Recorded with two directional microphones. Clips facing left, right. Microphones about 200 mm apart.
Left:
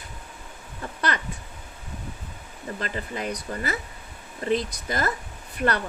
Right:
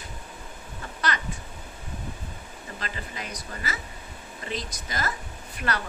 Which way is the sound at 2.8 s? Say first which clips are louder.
Left 6 dB; 50° left (ahead or behind).